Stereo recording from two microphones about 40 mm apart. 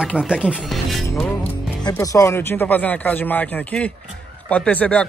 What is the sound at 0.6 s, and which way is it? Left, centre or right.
Music, centre.